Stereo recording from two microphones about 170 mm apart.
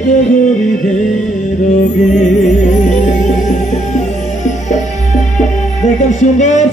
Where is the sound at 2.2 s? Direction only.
45° left (ahead or behind).